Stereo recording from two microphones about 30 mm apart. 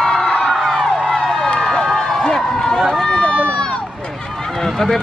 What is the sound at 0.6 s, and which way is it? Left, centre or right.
Music, centre.